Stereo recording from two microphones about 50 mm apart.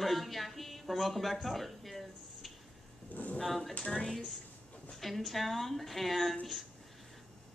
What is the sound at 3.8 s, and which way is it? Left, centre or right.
Speech, centre.